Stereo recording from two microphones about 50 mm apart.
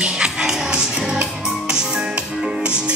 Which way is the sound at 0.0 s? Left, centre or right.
Centre.